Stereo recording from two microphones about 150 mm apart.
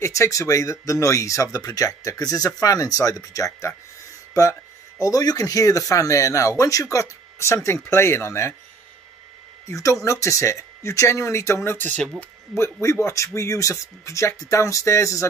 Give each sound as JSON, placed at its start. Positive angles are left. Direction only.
{"t": 0.0, "sound": "speech", "side_deg": 20}
{"t": 9.7, "sound": "speech", "side_deg": 20}